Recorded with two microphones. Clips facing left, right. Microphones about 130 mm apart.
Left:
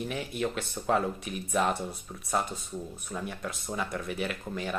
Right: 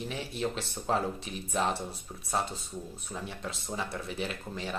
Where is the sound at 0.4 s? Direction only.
30° right (ahead or behind).